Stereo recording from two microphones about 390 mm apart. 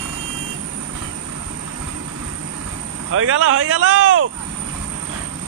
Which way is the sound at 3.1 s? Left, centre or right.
Right.